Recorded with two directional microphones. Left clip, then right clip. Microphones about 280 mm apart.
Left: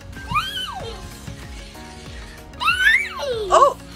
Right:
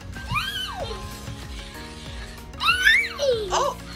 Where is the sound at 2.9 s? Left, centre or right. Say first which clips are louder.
Left 1 dB; centre.